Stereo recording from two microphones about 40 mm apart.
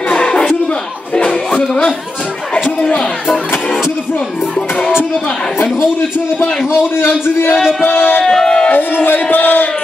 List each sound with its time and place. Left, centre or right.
0.1 s a sound: left
3.3 s music: centre
7.1 s a man's voice: left
7.8 s music: left
8.3 s a sound: centre
8.7 s music: left